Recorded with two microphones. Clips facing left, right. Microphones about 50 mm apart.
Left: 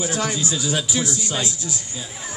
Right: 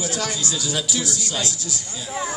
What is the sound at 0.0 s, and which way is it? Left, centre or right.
A man's voice, left.